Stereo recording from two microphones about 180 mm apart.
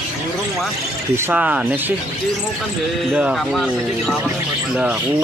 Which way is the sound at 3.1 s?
5° right (ahead or behind).